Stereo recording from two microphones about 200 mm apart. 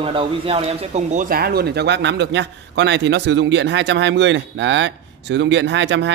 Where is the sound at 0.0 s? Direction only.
30° right (ahead or behind).